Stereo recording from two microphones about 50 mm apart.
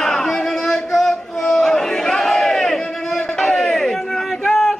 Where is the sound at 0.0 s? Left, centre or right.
Centre.